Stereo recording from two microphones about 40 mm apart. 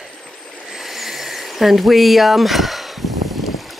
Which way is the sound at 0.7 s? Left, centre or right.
Centre.